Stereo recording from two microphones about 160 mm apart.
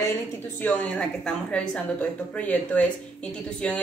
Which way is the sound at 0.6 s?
5° left (ahead or behind).